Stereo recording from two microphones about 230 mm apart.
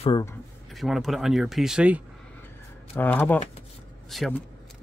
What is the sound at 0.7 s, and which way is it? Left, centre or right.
Speech, centre.